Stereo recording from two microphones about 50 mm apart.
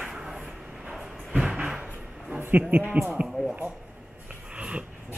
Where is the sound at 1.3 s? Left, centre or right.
Right.